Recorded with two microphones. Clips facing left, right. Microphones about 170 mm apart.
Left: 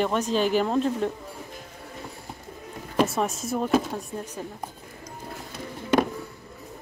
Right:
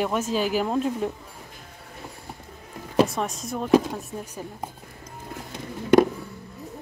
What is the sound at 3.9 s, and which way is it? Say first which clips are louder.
Speech: left 1 dB; 10° right (ahead or behind).